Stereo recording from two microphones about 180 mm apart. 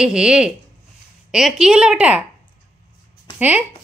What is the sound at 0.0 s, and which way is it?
A woman's voice, 5° right (ahead or behind).